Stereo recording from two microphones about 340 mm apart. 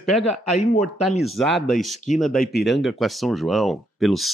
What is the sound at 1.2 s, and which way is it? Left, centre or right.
Speech, centre.